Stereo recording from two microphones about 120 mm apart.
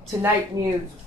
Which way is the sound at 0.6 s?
35° right (ahead or behind).